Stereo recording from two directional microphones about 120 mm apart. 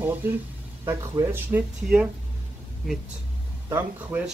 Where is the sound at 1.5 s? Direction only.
20° right (ahead or behind).